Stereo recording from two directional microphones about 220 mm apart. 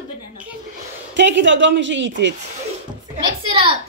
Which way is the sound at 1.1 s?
55° right (ahead or behind).